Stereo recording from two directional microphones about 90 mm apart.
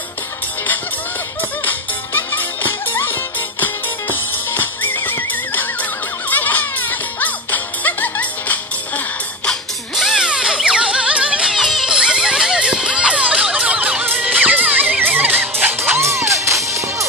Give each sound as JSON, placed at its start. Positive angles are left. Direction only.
{"t": 1.6, "sound": "music", "side_deg": 20}
{"t": 9.5, "sound": "music", "side_deg": 0}